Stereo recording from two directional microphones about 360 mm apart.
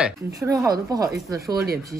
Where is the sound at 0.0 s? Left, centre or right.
Centre.